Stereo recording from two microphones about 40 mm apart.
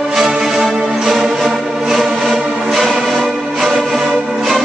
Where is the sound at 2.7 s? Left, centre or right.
Centre.